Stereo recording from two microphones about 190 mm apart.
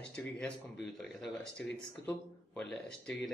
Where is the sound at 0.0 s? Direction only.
5° left (ahead or behind).